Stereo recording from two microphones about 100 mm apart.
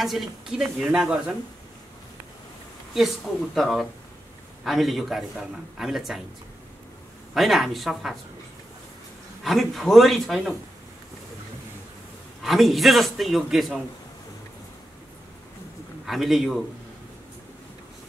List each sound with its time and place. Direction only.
0.0 s a man's voice: centre (ahead or behind)
2.9 s a man's voice: centre (ahead or behind)
7.3 s a man's voice: centre (ahead or behind)
9.4 s a man's voice: centre (ahead or behind)
12.4 s a man's voice: centre (ahead or behind)
16.1 s a man's voice: centre (ahead or behind)